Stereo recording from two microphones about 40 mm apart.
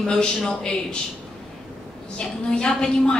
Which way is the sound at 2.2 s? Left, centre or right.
Centre.